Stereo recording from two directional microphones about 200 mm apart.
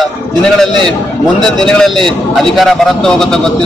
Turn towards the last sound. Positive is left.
turn(degrees=0)  # may be behind; listen again after turning